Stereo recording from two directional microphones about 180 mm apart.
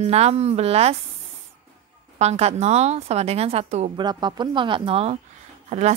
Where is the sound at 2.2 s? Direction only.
35° right (ahead or behind).